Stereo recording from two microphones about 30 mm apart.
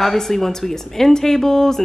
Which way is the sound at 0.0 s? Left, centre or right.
Centre.